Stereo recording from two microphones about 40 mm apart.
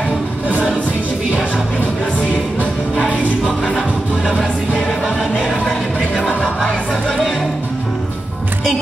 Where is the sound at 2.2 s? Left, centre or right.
Left.